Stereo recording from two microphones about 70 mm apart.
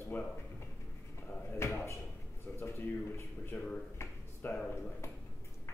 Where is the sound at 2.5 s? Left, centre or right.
Left.